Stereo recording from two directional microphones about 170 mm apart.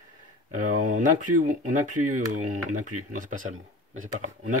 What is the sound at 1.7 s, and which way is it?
Speech, 50° right (ahead or behind).